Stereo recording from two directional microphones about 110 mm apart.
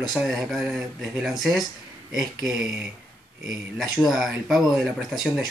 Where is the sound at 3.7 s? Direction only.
Centre (ahead or behind).